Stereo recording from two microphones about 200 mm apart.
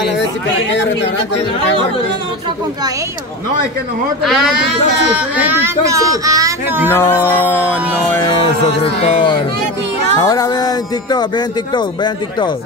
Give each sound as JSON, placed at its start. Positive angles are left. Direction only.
{"t": 4.2, "sound": "speech", "side_deg": 0}
{"t": 6.9, "sound": "a sound", "side_deg": 10}
{"t": 8.3, "sound": "a man's voice", "side_deg": 25}